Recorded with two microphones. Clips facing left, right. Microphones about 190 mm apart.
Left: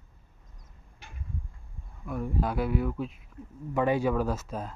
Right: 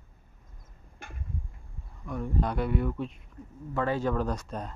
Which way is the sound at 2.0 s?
5° left (ahead or behind).